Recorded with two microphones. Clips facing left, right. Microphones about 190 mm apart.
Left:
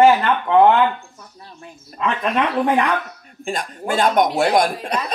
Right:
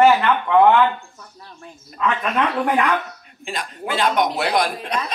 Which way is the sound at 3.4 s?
45° left (ahead or behind).